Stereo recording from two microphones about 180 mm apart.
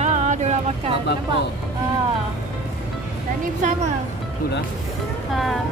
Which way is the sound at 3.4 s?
45° right (ahead or behind).